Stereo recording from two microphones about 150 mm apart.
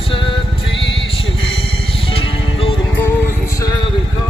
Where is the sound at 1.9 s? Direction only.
35° left (ahead or behind).